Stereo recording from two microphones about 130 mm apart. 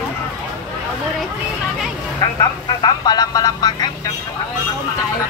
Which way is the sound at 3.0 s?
30° left (ahead or behind).